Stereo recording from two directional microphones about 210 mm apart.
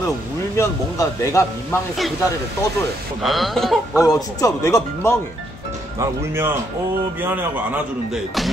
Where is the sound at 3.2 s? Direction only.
Centre (ahead or behind).